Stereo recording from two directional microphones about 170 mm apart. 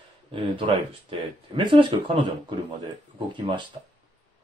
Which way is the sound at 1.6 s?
30° right (ahead or behind).